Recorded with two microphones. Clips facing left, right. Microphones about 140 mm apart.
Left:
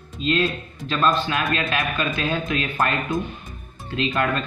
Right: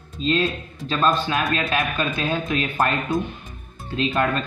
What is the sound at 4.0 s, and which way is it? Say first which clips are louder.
Speech: right 1 dB; 30° right (ahead or behind).